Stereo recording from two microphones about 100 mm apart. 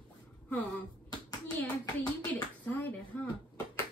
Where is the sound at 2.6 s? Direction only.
15° left (ahead or behind).